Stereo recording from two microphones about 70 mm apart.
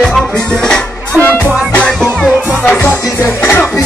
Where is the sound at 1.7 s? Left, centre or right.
Left.